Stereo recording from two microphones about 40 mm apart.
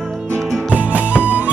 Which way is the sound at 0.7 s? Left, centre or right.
Right.